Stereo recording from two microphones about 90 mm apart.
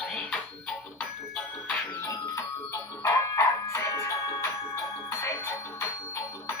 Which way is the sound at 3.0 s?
30° left (ahead or behind).